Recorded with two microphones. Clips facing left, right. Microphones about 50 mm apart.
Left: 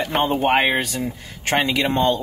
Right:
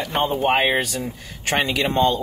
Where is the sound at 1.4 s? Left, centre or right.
Left.